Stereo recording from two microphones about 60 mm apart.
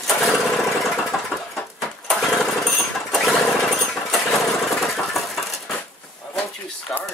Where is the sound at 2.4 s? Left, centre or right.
Centre.